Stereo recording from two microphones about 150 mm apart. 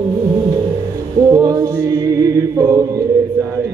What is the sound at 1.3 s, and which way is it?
Music, 25° right (ahead or behind).